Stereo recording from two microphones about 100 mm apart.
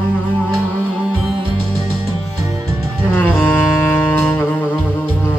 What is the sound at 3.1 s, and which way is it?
Music, 20° left (ahead or behind).